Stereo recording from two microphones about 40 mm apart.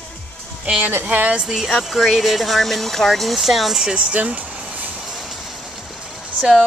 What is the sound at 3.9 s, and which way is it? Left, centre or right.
Speech, right.